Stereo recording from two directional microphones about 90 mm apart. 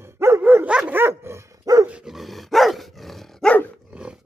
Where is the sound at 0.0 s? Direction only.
30° right (ahead or behind).